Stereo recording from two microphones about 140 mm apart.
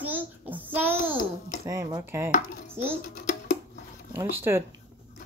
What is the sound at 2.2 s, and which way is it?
Dishes, 60° left (ahead or behind).